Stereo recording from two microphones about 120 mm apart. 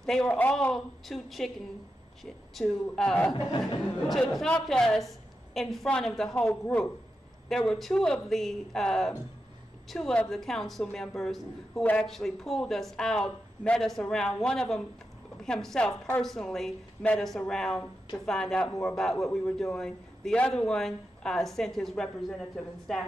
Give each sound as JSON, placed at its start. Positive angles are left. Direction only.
{"t": 0.0, "sound": "a man's voice", "side_deg": 5}
{"t": 2.5, "sound": "a man's voice", "side_deg": 5}
{"t": 18.7, "sound": "a man's voice", "side_deg": 25}
{"t": 18.9, "sound": "a man's voice", "side_deg": 5}